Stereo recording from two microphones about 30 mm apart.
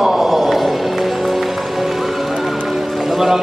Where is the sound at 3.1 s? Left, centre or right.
Centre.